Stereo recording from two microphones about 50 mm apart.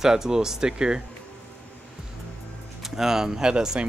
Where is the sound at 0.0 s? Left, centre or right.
Centre.